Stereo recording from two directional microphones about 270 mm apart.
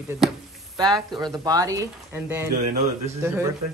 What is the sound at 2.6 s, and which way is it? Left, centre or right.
Speech, right.